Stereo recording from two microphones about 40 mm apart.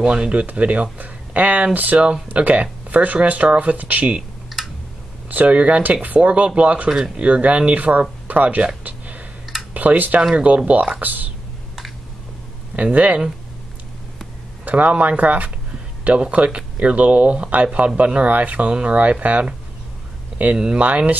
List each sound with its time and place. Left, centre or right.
0.0 s speech: right
4.5 s tick: centre
5.3 s speech: right
8.8 s a sound: right
9.8 s speech: right
10.3 s speech: right
12.7 s speech: right
14.6 s speech: right
16.4 s speech: right
20.5 s speech: centre
20.8 s speech: right